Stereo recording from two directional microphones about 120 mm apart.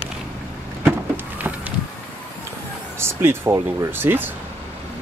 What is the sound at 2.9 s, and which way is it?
Speech, 20° right (ahead or behind).